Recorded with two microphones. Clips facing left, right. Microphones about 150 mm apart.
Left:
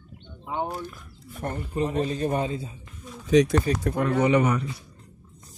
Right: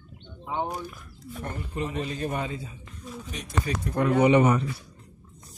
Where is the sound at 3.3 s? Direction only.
90° left.